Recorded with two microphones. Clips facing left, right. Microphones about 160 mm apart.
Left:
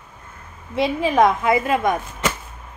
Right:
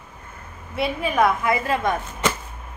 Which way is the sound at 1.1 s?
20° left (ahead or behind).